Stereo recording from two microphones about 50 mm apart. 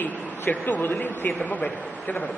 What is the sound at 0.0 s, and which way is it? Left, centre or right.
A man's voice, left.